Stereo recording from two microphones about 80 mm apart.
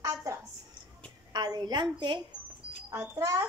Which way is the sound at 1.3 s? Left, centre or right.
Right.